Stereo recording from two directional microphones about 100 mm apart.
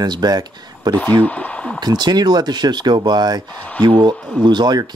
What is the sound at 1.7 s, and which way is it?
Speech, 45° right (ahead or behind).